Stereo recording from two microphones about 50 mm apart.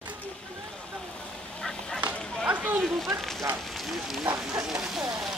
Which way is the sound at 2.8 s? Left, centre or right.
Centre.